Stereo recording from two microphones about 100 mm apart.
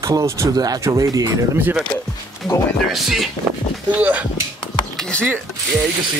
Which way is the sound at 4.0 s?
15° right (ahead or behind).